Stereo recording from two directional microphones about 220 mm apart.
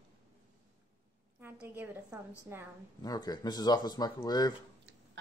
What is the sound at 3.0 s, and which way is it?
Speech, 15° left (ahead or behind).